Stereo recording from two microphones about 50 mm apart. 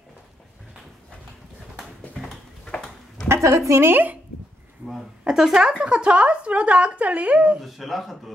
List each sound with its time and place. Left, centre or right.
2.6 s a sound: centre
3.3 s speech: right
3.8 s speech: right
5.2 s speech: centre
7.6 s speech: centre